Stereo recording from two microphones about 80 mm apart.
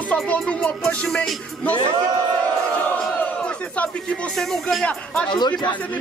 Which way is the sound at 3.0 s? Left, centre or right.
Centre.